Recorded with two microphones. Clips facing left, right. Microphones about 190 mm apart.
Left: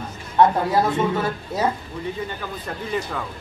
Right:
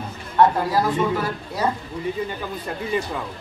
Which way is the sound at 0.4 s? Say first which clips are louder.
Left 1 dB; 25° left (ahead or behind).